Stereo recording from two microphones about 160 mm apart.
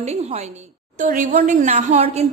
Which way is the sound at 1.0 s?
60° right (ahead or behind).